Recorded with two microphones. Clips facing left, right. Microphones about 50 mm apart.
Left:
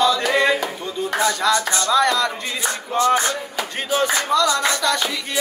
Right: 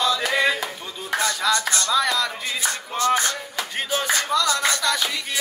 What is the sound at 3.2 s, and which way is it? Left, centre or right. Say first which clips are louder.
Music: left 3 dB; centre.